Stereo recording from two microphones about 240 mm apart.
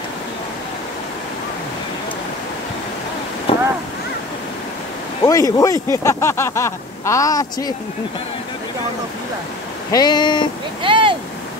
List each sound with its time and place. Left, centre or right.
3.5 s a sound: left
5.2 s speech: centre
9.8 s speech: centre
10.8 s speech: right